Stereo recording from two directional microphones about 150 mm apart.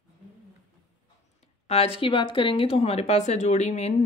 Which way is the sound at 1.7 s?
40° left (ahead or behind).